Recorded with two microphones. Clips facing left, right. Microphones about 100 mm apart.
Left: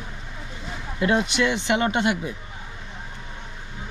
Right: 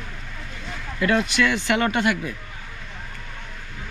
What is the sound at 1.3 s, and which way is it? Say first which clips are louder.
A woman's voice: right 1 dB; 25° left (ahead or behind).